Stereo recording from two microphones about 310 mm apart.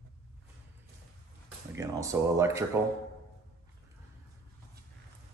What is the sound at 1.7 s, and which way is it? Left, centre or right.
Speech, centre.